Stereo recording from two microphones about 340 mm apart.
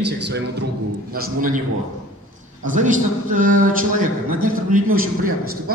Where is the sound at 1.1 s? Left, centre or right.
Right.